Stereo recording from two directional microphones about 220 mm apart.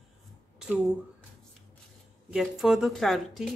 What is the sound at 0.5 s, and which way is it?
Speech, 5° right (ahead or behind).